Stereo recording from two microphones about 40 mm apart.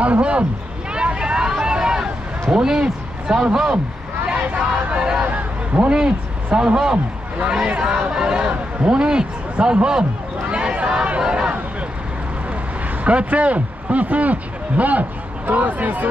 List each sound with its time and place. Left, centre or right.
0.0 s speech: right
0.9 s vehicle: right
1.6 s boat: centre
2.5 s a man's voice: centre
4.6 s a man's voice: right
5.2 s a sound: right
5.9 s a man's voice: centre
10.5 s a sound: right
13.0 s speech: right